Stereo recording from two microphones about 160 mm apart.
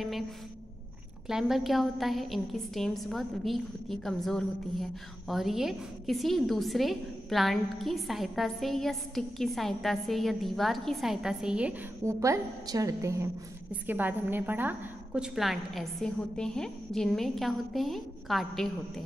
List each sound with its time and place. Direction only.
1.2 s a woman's voice: centre (ahead or behind)
12.0 s a woman's voice: 20° right (ahead or behind); by 19.0 s centre (ahead or behind)